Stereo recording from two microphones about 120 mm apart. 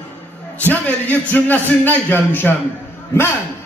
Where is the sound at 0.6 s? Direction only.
15° left (ahead or behind).